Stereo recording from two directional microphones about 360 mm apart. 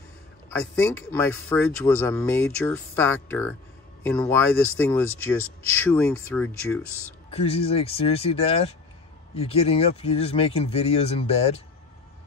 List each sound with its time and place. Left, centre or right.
1.1 s speech: centre
5.4 s speech: left
5.8 s speech: centre
7.2 s speech: centre